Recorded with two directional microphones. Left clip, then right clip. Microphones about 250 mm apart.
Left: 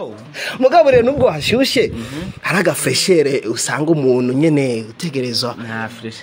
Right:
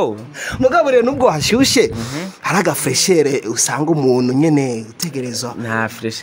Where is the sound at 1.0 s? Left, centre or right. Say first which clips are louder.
Even; right.